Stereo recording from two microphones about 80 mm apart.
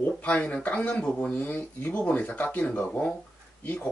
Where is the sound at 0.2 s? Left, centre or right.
Centre.